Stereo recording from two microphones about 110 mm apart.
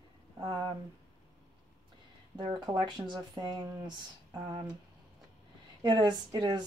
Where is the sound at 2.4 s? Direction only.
45° right (ahead or behind).